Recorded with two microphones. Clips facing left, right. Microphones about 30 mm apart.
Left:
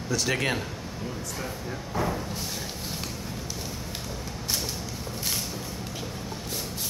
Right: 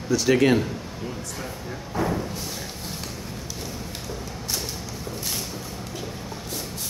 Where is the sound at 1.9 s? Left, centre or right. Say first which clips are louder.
Right 3 dB; centre.